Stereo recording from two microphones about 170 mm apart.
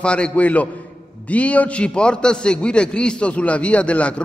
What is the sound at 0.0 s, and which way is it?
A man's voice, 5° left (ahead or behind).